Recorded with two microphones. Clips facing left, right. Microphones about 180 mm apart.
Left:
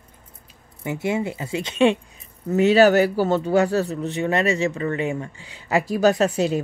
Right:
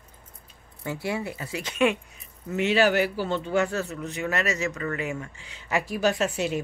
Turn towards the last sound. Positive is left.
turn(degrees=35)  # may be behind; listen again after turning